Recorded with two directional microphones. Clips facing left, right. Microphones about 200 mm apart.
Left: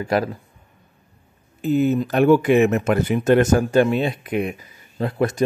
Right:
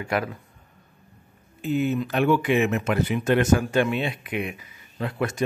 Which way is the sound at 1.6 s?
40° left (ahead or behind).